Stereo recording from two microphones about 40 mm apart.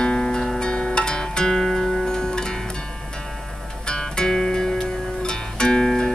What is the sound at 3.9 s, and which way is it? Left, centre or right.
Music, centre.